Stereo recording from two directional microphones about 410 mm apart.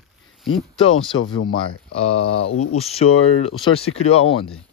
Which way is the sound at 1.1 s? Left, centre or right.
Left.